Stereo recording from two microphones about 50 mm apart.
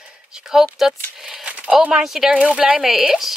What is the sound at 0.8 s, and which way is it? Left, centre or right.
Speech, centre.